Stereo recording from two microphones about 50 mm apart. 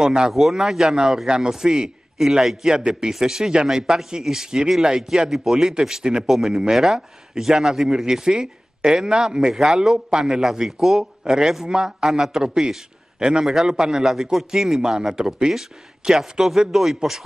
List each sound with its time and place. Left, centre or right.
0.0 s a man's voice: centre
0.3 s a man's voice: centre